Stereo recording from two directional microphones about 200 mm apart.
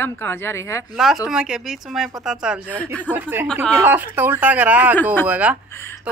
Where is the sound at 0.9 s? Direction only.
Centre (ahead or behind).